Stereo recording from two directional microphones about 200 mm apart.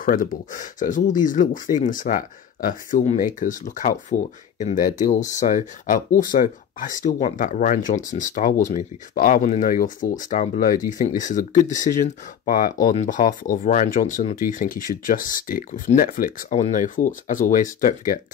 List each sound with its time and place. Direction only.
0.0 s speech: 45° left (ahead or behind)